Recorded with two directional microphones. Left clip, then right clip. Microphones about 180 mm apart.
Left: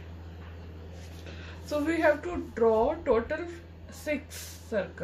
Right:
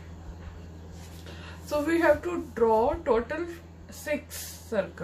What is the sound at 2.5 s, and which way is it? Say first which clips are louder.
Speech: right 1 dB; 25° right (ahead or behind).